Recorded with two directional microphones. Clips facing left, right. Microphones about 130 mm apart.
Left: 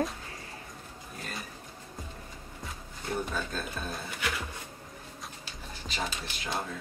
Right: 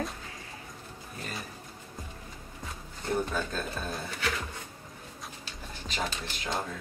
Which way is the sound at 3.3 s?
Centre (ahead or behind).